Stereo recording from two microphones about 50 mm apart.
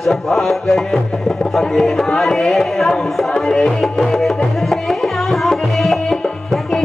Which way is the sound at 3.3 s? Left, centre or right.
Centre.